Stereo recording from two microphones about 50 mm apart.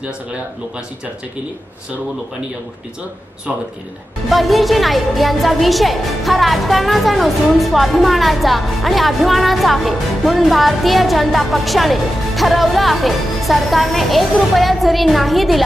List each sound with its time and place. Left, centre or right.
4.3 s a woman's voice: centre